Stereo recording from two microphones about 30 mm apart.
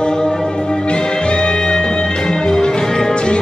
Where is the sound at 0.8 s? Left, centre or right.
Left.